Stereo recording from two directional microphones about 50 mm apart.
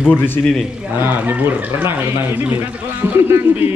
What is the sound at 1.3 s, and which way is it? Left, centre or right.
Speech, right.